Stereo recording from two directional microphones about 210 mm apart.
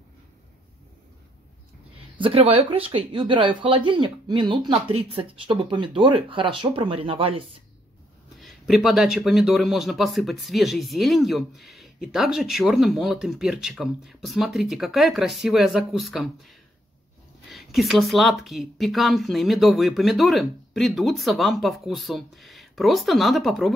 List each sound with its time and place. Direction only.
2.1 s speech: 25° right (ahead or behind)
8.4 s speech: centre (ahead or behind)